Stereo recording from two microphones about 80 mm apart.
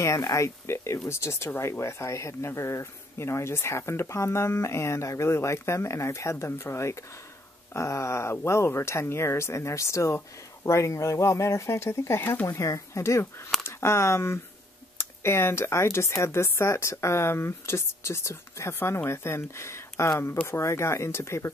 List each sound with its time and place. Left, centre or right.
0.0 s speech: left